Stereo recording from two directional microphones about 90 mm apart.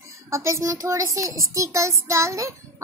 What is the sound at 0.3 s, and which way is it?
A child's voice, 35° right (ahead or behind).